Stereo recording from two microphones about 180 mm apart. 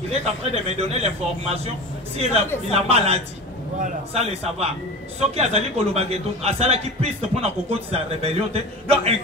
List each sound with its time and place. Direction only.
0.1 s a man's voice: 35° right (ahead or behind)
2.7 s a man's voice: 35° right (ahead or behind)